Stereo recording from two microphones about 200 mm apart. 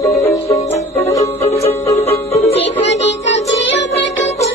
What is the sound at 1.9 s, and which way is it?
Music, 35° left (ahead or behind).